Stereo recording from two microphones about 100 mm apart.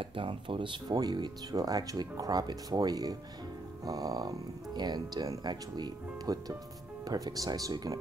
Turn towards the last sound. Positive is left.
turn(degrees=-35)  # may be behind; listen again after turning